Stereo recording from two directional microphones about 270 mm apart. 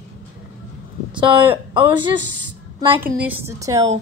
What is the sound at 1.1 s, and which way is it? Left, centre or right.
Speech, centre.